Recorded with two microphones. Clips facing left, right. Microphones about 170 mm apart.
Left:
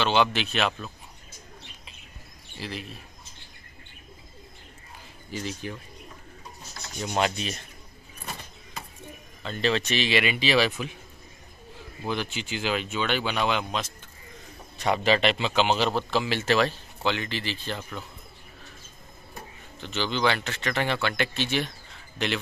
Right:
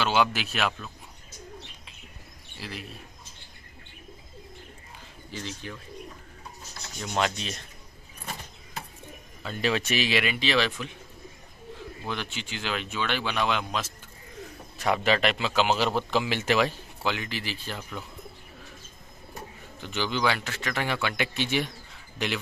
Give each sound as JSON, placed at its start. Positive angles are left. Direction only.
{"t": 0.0, "sound": "speech", "side_deg": -5}
{"t": 2.6, "sound": "speech", "side_deg": 0}
{"t": 5.3, "sound": "rub", "side_deg": 10}
{"t": 7.0, "sound": "rub", "side_deg": 5}
{"t": 9.4, "sound": "speech", "side_deg": -10}
{"t": 12.1, "sound": "a man's voice", "side_deg": 5}
{"t": 19.8, "sound": "a man's voice", "side_deg": -10}